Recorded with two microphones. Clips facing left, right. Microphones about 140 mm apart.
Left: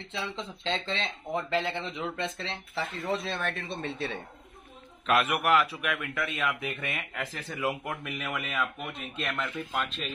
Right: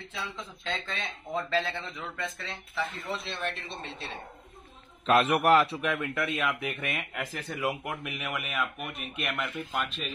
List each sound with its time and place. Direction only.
0.2 s speech: 30° left (ahead or behind)
3.3 s a man's voice: 50° left (ahead or behind)
5.0 s a man's voice: 30° right (ahead or behind); by 8.3 s 15° right (ahead or behind)
8.3 s speech: 5° right (ahead or behind)